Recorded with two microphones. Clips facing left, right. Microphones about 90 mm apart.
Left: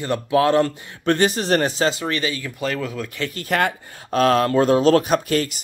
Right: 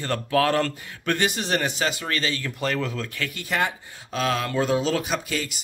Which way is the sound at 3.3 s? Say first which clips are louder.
Left 5 dB; 50° left (ahead or behind).